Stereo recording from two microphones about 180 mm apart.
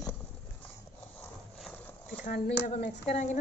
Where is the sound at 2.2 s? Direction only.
45° left (ahead or behind).